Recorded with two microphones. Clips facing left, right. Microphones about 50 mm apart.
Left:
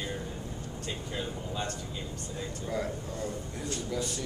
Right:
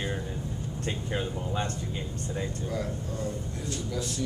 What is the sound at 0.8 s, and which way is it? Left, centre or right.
Speech, right.